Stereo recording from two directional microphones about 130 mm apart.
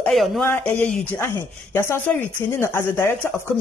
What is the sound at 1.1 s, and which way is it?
Speech, 20° left (ahead or behind).